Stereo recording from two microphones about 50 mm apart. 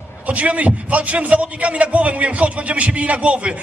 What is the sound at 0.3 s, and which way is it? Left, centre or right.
A man's voice, right.